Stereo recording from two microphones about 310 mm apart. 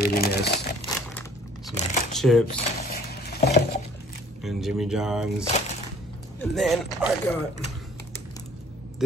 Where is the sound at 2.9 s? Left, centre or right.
Left.